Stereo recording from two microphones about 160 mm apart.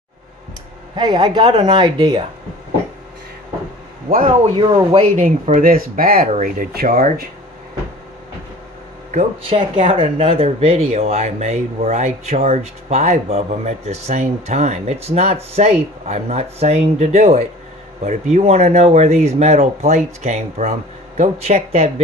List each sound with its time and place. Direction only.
0.9 s speech: 25° right (ahead or behind)
4.6 s speech: 30° right (ahead or behind)
5.1 s speech: 50° right (ahead or behind); by 7.2 s 70° right (ahead or behind)
9.4 s speech: 35° right (ahead or behind)